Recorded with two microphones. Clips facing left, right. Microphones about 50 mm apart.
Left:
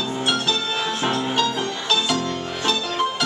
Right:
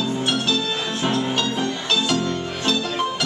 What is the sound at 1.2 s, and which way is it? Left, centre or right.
Music, centre.